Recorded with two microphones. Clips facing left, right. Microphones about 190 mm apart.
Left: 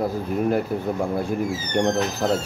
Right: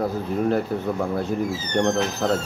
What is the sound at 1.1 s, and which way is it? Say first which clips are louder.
Speech: even; 15° left (ahead or behind).